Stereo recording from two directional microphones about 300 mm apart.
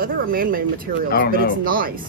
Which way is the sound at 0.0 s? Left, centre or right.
Right.